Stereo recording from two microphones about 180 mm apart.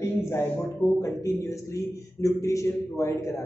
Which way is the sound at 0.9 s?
15° left (ahead or behind).